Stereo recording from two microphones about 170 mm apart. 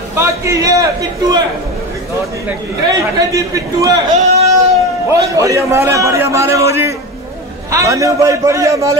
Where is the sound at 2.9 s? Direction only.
20° right (ahead or behind).